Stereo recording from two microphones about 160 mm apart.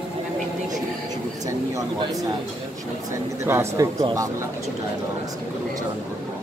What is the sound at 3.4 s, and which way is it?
Speech, 15° right (ahead or behind).